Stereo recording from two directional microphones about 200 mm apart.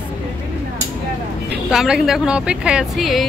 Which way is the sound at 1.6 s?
5° right (ahead or behind).